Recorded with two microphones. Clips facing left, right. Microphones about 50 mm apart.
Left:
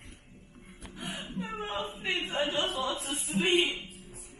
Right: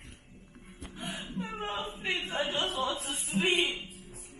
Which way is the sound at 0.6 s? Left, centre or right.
Right.